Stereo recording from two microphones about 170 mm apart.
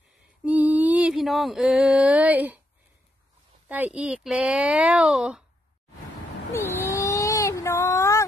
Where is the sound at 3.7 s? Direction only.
10° right (ahead or behind).